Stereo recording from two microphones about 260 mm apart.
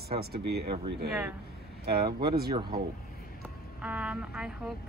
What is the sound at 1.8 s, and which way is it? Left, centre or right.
Speech, right.